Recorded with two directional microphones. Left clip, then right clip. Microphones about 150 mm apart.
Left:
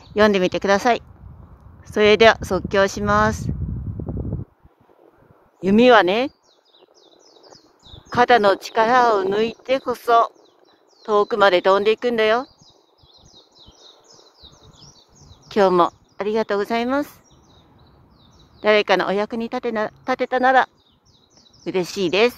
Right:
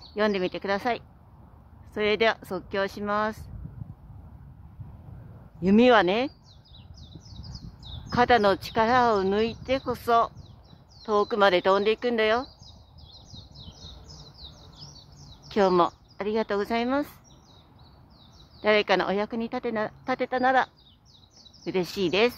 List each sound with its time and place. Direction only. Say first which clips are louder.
0.1 s speech: left 10 dB; 50° left (ahead or behind)
5.6 s speech: left 6 dB; 50° left (ahead or behind)
8.1 s speech: left 6 dB; 50° left (ahead or behind)
15.4 s speech: left 6 dB; 50° left (ahead or behind)
18.6 s speech: left 6 dB; 50° left (ahead or behind)